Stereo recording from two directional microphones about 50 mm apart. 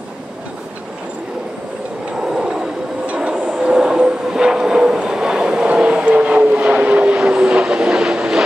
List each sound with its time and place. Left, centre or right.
2.2 s vehicle: centre